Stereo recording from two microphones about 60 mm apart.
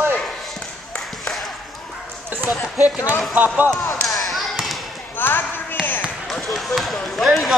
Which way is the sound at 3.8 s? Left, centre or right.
Left.